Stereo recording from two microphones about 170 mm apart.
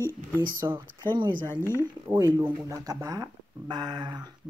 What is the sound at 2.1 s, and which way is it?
Speech, 15° right (ahead or behind).